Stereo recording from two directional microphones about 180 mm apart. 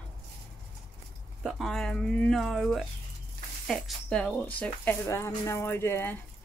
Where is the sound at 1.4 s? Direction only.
Centre (ahead or behind).